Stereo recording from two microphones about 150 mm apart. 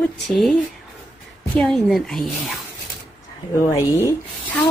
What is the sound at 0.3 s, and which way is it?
Speech, centre (ahead or behind).